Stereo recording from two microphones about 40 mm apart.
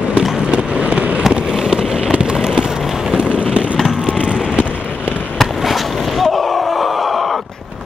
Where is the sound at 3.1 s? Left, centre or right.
Right.